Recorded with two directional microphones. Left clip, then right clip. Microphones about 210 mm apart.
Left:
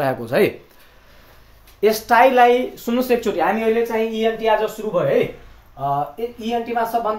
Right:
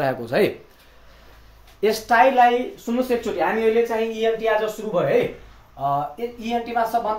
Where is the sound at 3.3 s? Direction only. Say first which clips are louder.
Left 4 dB; 50° left (ahead or behind).